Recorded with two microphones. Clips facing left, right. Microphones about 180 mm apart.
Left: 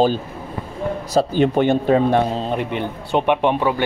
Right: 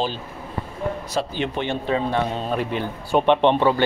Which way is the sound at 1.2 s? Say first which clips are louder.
Left 11 dB; 45° left (ahead or behind).